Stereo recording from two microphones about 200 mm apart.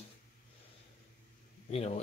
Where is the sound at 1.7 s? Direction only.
30° left (ahead or behind).